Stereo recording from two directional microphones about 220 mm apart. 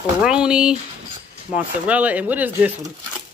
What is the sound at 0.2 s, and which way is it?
Speech, 5° right (ahead or behind).